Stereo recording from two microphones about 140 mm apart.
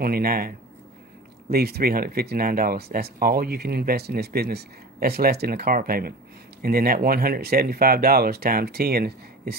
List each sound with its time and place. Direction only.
0.0 s speech: 90° right